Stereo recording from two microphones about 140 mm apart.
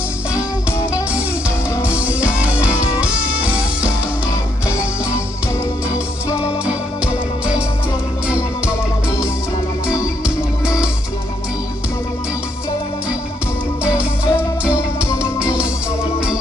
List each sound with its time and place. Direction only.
0.3 s music: 5° right (ahead or behind)
1.8 s music: 10° right (ahead or behind)
4.6 s music: 20° left (ahead or behind)
5.9 s organ: 10° right (ahead or behind)
9.8 s music: 5° right (ahead or behind)
13.8 s music: 10° right (ahead or behind)